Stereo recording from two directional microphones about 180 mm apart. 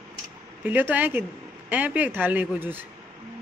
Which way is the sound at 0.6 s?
10° right (ahead or behind).